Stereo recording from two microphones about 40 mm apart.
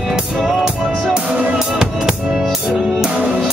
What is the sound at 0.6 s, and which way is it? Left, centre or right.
Music, right.